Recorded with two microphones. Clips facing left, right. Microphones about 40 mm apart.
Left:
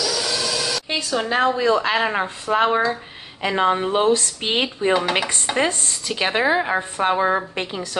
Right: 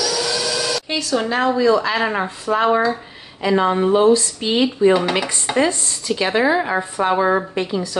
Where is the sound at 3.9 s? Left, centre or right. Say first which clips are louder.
Right 4 dB; left.